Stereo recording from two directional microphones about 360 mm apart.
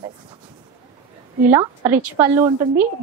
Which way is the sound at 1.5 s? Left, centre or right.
Centre.